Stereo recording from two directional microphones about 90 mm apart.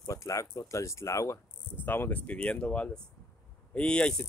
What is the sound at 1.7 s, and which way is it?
Speech, 25° left (ahead or behind).